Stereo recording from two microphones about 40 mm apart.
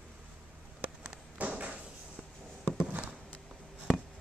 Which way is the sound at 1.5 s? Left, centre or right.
Right.